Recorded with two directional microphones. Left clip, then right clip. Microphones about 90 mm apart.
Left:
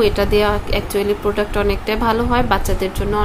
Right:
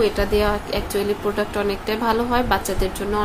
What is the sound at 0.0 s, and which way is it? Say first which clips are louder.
A woman's voice: left 4 dB; 35° left (ahead or behind).